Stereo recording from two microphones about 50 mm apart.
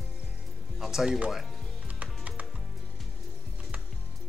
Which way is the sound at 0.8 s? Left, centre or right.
Centre.